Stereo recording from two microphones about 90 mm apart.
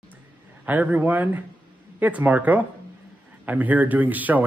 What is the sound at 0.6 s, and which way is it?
Speech, 20° right (ahead or behind).